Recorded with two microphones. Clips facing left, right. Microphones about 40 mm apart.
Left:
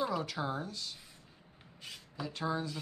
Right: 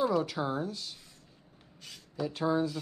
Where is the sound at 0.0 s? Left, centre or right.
Centre.